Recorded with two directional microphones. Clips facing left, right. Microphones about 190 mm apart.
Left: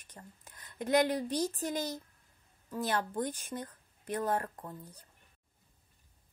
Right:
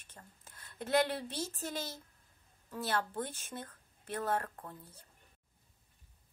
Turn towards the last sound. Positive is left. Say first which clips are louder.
# left 2 dB
turn(degrees=15)  # may be behind; listen again after turning